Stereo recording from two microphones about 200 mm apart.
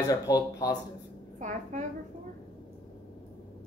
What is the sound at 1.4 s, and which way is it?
Speech, 40° right (ahead or behind).